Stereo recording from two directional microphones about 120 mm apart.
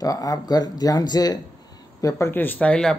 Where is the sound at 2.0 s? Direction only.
20° left (ahead or behind).